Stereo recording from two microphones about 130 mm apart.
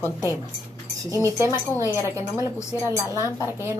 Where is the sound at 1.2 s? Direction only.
20° right (ahead or behind).